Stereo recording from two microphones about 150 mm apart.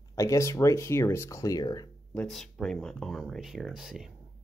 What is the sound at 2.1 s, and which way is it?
Speech, centre (ahead or behind).